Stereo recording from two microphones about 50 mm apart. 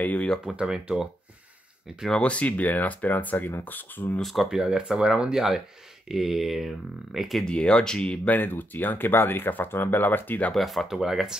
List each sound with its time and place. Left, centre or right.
0.0 s a sound: left
0.6 s speech: centre
2.0 s speech: left
4.2 s speech: centre
7.4 s speech: centre
8.3 s speech: left
10.5 s speech: centre